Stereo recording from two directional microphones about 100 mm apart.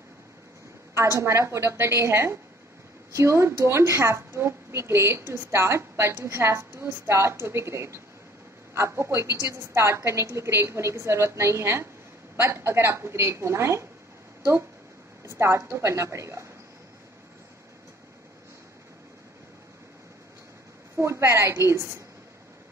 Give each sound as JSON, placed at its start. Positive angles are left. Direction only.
{"t": 1.2, "sound": "a woman's voice", "side_deg": -30}
{"t": 15.2, "sound": "a woman's voice", "side_deg": -30}
{"t": 20.9, "sound": "a woman's voice", "side_deg": -30}